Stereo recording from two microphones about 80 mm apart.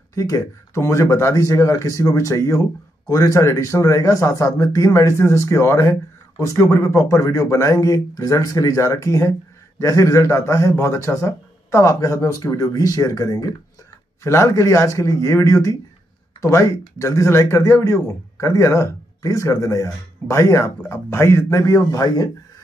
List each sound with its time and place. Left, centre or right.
0.1 s speech: left
14.2 s speech: left